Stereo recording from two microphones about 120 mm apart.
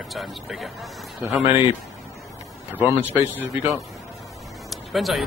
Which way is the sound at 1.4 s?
50° left (ahead or behind).